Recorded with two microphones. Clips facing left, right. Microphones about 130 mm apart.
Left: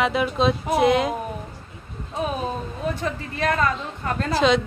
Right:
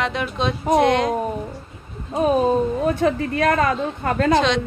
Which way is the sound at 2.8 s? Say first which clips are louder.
Right 8 dB; 55° right (ahead or behind).